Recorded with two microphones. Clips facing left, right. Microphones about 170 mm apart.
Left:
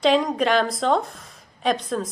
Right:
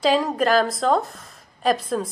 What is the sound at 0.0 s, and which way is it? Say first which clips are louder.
A woman's voice: even; centre (ahead or behind).